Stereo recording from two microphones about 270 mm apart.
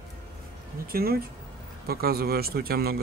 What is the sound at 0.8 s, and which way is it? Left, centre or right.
Speech, right.